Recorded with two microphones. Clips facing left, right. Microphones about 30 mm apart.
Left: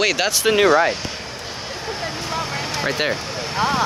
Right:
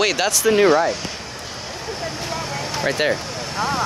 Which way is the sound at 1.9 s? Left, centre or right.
Left.